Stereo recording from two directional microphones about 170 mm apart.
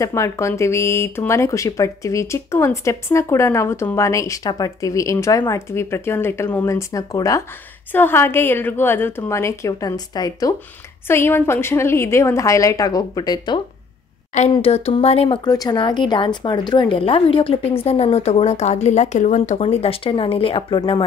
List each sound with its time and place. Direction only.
0.0 s speech: 15° left (ahead or behind)
14.5 s speech: 35° left (ahead or behind)